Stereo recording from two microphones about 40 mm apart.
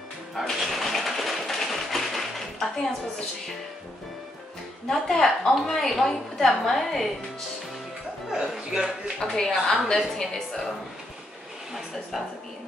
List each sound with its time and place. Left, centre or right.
0.3 s a sound: centre
4.8 s a woman's voice: centre
8.3 s speech: centre
9.3 s a woman's voice: centre